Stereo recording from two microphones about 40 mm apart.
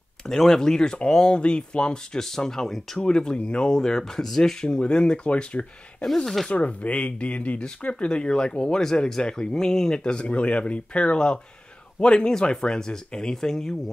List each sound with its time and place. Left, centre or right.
0.3 s speech: centre; by 2.0 s left
2.1 s speech: centre
3.0 s speech: left
4.6 s speech: left
6.2 s speech: centre
6.5 s speech: left
7.9 s speech: left